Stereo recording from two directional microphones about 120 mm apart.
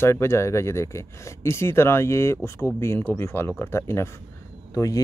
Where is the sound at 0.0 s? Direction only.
20° left (ahead or behind).